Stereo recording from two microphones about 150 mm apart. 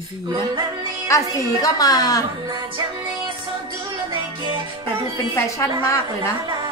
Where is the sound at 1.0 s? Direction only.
20° left (ahead or behind).